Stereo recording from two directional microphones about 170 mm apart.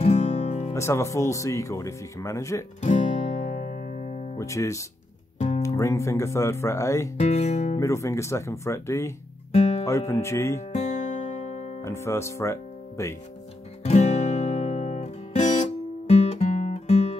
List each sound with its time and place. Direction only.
0.0 s music: 40° left (ahead or behind)
0.7 s speech: 15° left (ahead or behind)
2.8 s music: 45° left (ahead or behind)
4.4 s speech: 15° left (ahead or behind)
7.2 s speech: 40° left (ahead or behind)
7.7 s speech: 20° left (ahead or behind)
9.5 s music: 40° left (ahead or behind)
9.8 s speech: 15° left (ahead or behind)
10.7 s music: 45° left (ahead or behind)
11.8 s speech: 15° left (ahead or behind)
13.8 s guitar: 40° left (ahead or behind)